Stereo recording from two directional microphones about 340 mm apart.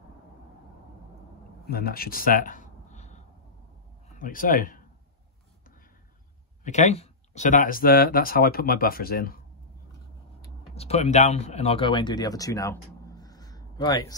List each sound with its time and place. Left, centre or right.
1.7 s a man's voice: left
4.2 s speech: left
6.6 s speech: left
10.7 s speech: centre
13.2 s a sound: centre